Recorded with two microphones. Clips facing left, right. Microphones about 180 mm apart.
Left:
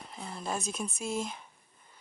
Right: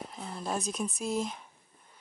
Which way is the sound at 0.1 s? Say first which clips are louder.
Even; centre (ahead or behind).